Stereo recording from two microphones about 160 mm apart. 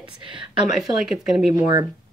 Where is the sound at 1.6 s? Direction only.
25° right (ahead or behind).